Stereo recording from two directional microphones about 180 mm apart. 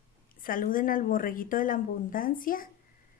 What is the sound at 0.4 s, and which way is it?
A woman's voice, 50° left (ahead or behind).